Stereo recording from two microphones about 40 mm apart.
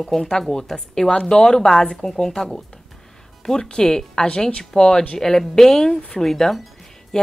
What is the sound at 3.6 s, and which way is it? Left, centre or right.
A woman's voice, centre.